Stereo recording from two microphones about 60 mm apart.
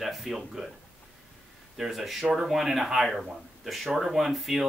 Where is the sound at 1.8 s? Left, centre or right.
Centre.